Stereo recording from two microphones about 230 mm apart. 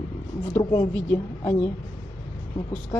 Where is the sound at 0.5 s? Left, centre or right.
Centre.